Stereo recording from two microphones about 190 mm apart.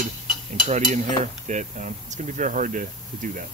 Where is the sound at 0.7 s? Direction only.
40° right (ahead or behind).